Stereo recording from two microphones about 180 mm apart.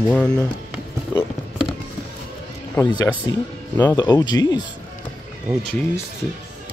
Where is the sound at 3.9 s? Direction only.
20° left (ahead or behind).